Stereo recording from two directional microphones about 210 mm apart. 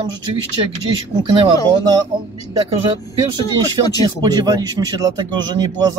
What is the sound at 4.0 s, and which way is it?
Speech, 20° right (ahead or behind).